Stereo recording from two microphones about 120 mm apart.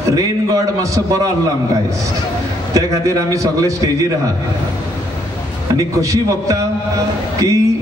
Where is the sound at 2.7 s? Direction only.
30° right (ahead or behind).